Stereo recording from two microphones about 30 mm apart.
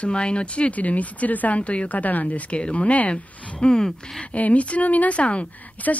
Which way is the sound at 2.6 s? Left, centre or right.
Left.